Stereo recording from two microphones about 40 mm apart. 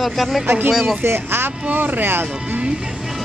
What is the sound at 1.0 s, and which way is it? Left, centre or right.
Speech, right.